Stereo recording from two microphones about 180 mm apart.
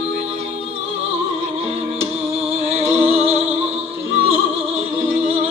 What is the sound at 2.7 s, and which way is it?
Music, 35° right (ahead or behind).